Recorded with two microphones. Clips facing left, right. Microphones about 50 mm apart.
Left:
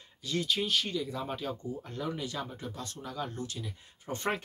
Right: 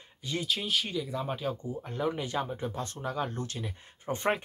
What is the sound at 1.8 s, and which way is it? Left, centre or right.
Speech, right.